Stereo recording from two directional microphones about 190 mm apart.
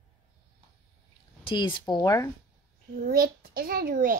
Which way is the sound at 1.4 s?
25° left (ahead or behind).